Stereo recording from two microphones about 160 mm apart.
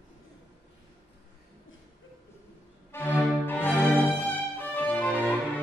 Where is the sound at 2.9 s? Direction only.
10° left (ahead or behind).